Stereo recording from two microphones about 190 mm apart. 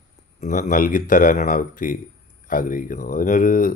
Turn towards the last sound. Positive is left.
turn(degrees=45)  # may be behind; listen again after turning